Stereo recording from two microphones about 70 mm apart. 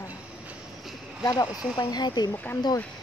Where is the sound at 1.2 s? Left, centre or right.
Left.